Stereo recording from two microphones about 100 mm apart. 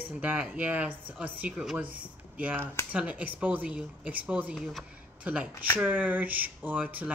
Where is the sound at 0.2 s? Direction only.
15° right (ahead or behind).